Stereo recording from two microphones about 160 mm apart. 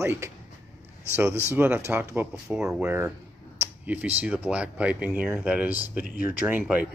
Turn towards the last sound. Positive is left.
turn(degrees=-10)  # may be behind; listen again after turning